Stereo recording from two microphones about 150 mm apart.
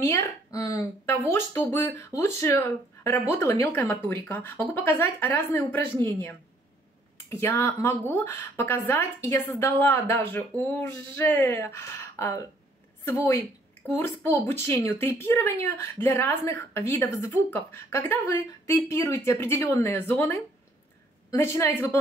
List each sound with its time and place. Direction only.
0.0 s speech: 20° left (ahead or behind)